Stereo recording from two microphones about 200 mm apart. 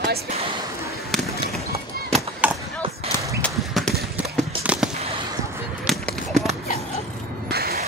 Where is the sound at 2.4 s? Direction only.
5° right (ahead or behind).